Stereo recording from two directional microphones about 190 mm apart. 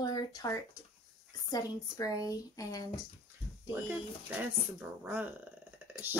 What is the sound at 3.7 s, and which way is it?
A woman's voice, 10° right (ahead or behind).